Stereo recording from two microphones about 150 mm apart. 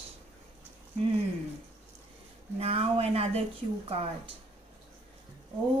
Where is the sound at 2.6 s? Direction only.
40° right (ahead or behind).